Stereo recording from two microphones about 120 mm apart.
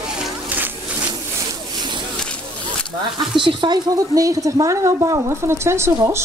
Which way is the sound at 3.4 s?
40° right (ahead or behind).